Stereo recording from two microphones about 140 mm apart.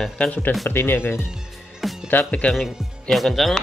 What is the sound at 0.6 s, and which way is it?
Speech, 15° left (ahead or behind).